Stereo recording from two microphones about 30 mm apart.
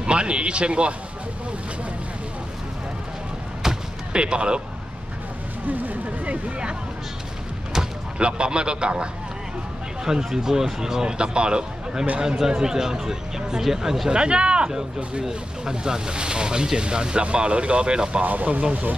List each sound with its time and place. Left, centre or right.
0.0 s speech: right
3.6 s a sound: centre
4.1 s speech: right
5.7 s speech: right
8.2 s speech: right
10.0 s speech: centre
11.1 s speech: right
12.4 s speech: right
14.1 s speech: right
15.2 s speech: right
18.2 s speech: right